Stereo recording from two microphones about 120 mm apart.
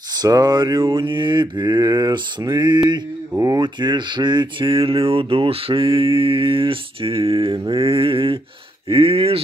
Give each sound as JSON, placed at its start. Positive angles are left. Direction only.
{"t": 0.2, "sound": "mantra", "side_deg": -30}
{"t": 3.3, "sound": "speech", "side_deg": -25}
{"t": 3.6, "sound": "speech", "side_deg": -40}